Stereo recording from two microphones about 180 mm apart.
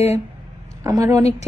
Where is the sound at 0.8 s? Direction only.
20° right (ahead or behind).